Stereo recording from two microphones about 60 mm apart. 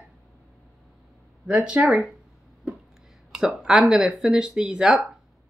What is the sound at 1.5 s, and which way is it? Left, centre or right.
Speech, centre.